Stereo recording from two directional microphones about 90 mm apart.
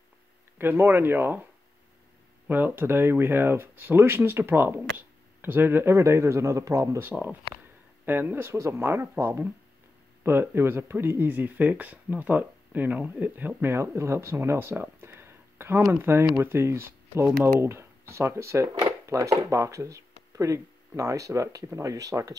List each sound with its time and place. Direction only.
0.6 s speech: 25° right (ahead or behind); by 22.3 s 40° right (ahead or behind)